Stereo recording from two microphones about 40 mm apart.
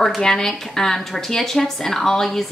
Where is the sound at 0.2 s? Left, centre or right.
Centre.